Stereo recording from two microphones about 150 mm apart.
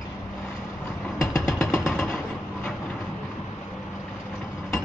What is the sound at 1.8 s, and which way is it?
Vehicle, centre (ahead or behind).